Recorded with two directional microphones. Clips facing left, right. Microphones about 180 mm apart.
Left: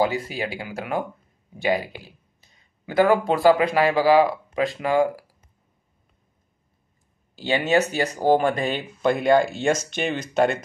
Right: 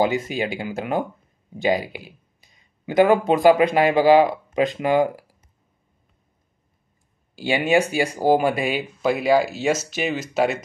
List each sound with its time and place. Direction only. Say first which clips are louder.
0.0 s speech: right 2 dB; 20° right (ahead or behind)
7.3 s speech: right 1 dB; 10° right (ahead or behind)